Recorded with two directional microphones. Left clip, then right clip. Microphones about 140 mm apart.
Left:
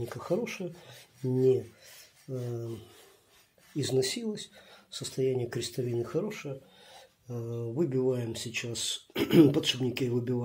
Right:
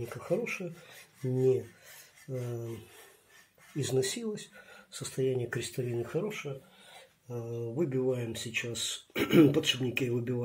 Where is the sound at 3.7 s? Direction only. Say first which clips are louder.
Left 2 dB; 10° left (ahead or behind).